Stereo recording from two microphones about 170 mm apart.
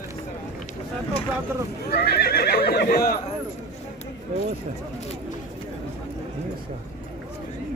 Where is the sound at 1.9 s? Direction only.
70° left (ahead or behind).